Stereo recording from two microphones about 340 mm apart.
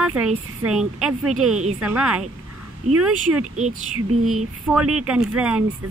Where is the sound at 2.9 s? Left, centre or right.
Right.